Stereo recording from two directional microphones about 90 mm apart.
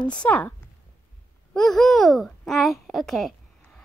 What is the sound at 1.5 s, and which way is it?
Speech, 5° left (ahead or behind).